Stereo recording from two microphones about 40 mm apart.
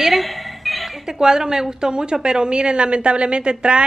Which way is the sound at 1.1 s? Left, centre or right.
Centre.